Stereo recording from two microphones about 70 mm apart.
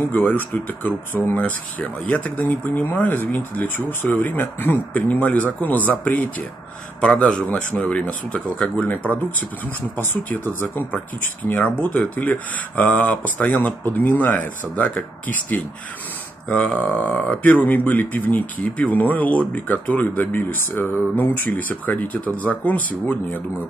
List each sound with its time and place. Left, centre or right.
0.1 s speech: left
17.5 s speech: left